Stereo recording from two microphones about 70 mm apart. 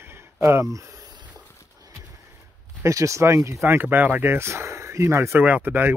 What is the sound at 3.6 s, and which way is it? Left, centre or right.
Speech, right.